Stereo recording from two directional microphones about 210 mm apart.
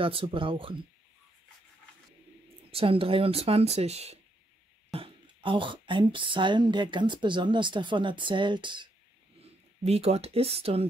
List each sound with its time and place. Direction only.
0.0 s speech: 25° right (ahead or behind)
2.7 s speech: 25° right (ahead or behind)